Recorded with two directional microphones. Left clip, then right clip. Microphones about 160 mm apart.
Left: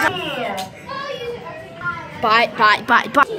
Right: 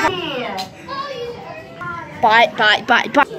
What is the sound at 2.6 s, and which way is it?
Speech, 15° left (ahead or behind).